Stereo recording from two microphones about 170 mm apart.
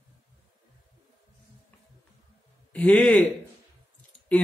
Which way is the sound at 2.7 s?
10° left (ahead or behind).